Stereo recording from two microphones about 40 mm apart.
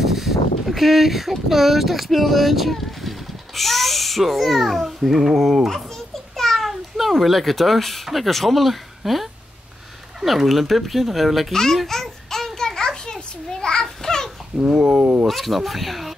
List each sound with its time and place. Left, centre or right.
0.0 s speech: centre
5.9 s a child's voice: centre
11.5 s a child's voice: centre
11.8 s a sound: centre
13.8 s babbling: centre
14.6 s speech: right
15.2 s speech: centre